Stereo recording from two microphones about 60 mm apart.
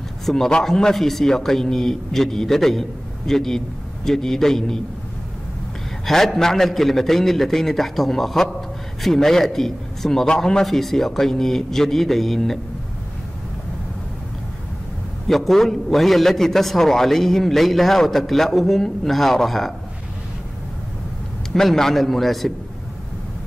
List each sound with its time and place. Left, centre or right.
0.2 s a man's voice: centre
6.0 s a man's voice: centre
15.2 s a man's voice: centre
21.5 s a man's voice: centre